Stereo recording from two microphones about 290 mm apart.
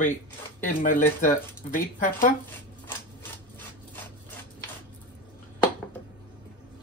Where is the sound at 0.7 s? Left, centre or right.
Left.